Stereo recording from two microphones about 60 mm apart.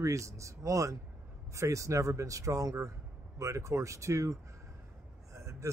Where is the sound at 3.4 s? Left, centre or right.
Right.